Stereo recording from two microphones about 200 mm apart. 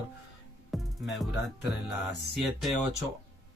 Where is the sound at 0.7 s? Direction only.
Centre (ahead or behind).